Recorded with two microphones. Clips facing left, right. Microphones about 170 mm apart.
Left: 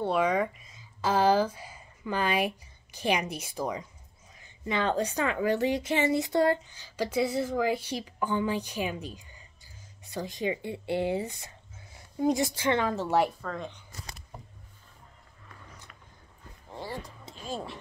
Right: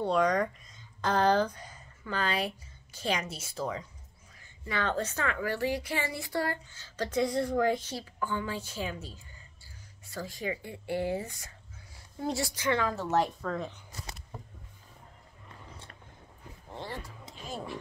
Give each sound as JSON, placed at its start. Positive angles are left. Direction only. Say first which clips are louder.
{"t": 0.0, "sound": "a woman's voice", "louder": "left 1 dB", "side_deg": 5}
{"t": 13.1, "sound": "speech", "louder": "left 1 dB", "side_deg": 5}
{"t": 15.4, "sound": "vehicle", "louder": "right 1 dB", "side_deg": -30}
{"t": 16.7, "sound": "a sound", "louder": "left 2 dB", "side_deg": 10}
{"t": 17.2, "sound": "music", "louder": "left 3 dB", "side_deg": 25}